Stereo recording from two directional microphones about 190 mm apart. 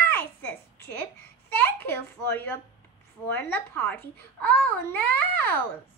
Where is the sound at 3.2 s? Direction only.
10° left (ahead or behind).